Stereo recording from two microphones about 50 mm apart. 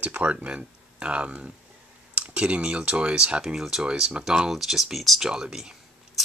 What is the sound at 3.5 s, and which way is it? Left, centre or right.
Speech, centre.